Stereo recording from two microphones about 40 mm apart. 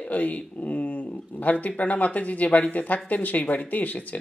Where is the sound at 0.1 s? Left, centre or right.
Left.